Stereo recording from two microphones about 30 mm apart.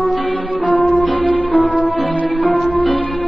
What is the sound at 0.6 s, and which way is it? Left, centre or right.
Music, left.